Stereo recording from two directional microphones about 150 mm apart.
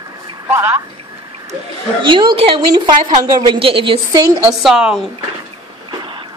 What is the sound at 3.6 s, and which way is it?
Speech, 35° right (ahead or behind).